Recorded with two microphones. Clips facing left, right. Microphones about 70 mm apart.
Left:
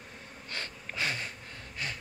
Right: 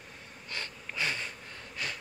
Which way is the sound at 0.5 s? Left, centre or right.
Left.